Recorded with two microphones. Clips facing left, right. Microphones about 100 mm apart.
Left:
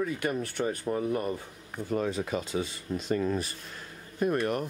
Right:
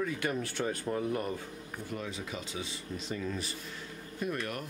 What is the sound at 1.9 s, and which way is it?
Speech, 45° left (ahead or behind).